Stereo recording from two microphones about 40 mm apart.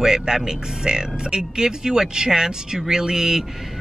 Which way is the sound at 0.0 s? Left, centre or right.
Centre.